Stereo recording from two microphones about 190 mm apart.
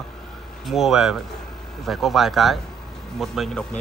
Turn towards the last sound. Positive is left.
turn(degrees=5)  # may be behind; listen again after turning